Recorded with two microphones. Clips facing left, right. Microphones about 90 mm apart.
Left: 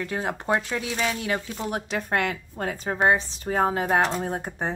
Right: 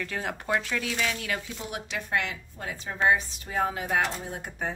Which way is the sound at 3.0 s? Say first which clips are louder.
Left 2 dB; 30° left (ahead or behind).